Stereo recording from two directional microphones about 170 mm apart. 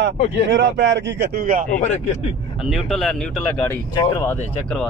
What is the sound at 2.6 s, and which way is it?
Speech, centre (ahead or behind).